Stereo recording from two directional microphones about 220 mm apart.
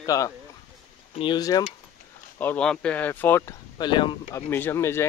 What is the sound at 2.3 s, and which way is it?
Speech, 5° left (ahead or behind).